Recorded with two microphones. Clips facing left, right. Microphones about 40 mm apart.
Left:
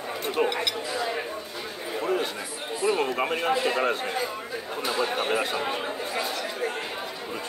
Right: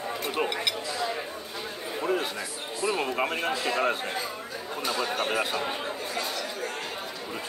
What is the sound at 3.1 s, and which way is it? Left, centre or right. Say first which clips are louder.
Speech: left 1 dB; centre.